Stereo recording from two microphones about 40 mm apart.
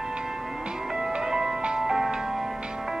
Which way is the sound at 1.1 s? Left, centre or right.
Centre.